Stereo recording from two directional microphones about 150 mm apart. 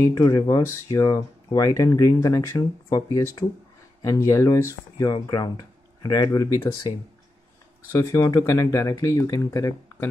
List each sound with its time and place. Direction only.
0.0 s speech: 25° left (ahead or behind)
7.9 s speech: 20° left (ahead or behind)